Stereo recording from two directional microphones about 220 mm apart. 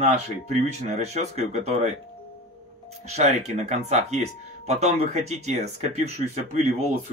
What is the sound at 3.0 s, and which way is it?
Speech, 30° right (ahead or behind).